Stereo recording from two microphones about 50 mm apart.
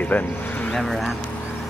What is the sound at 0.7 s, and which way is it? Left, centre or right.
Speech, centre.